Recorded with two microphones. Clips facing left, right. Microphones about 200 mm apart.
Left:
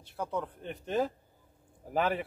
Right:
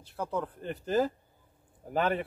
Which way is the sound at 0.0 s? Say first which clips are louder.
Right 1 dB; centre (ahead or behind).